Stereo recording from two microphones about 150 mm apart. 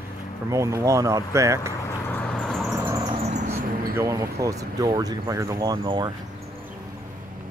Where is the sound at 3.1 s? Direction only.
50° right (ahead or behind).